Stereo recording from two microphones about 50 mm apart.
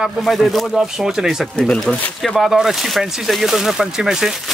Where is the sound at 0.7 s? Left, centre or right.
Centre.